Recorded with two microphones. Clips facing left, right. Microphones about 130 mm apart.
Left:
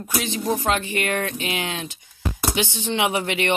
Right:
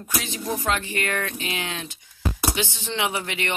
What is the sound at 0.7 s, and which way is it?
Speech, 20° left (ahead or behind).